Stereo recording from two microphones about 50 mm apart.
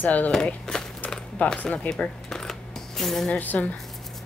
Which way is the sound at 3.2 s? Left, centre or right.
Left.